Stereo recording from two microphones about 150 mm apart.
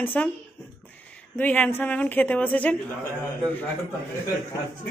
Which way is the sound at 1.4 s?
10° left (ahead or behind).